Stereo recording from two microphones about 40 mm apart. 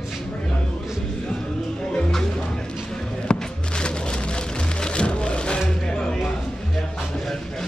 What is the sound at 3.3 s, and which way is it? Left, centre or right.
Music, left.